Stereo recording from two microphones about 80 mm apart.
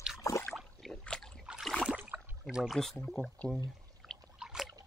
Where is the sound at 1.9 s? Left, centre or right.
Right.